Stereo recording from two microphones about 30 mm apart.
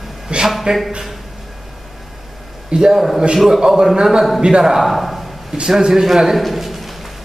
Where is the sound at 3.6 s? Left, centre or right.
Right.